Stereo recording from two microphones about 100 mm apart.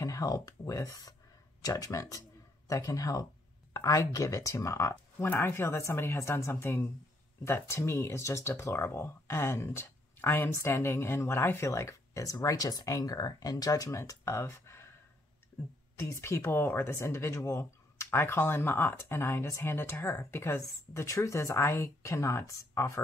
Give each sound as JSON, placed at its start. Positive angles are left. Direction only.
{"t": 0.0, "sound": "speech", "side_deg": 35}
{"t": 16.0, "sound": "speech", "side_deg": 25}